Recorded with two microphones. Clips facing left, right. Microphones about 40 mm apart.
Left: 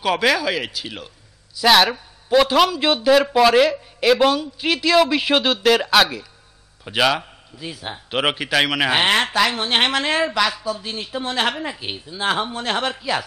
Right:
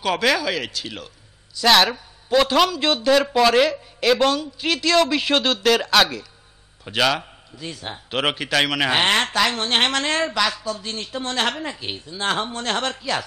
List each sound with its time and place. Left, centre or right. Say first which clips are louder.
0.0 s a man's voice: left 2 dB; centre